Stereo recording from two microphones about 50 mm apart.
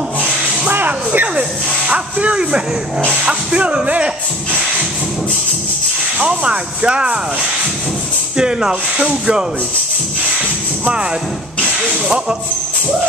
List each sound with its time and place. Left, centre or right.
0.7 s a sound: right
1.9 s speech: right
6.1 s speech: right
8.4 s speech: centre